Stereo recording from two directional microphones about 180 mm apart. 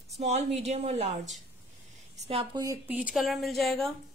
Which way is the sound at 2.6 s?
20° right (ahead or behind).